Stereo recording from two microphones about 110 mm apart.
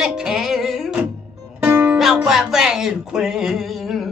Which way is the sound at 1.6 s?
20° right (ahead or behind).